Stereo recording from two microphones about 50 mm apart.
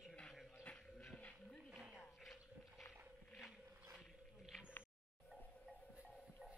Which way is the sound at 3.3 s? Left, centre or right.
Centre.